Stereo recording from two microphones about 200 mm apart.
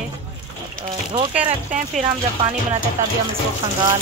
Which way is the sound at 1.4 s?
35° right (ahead or behind).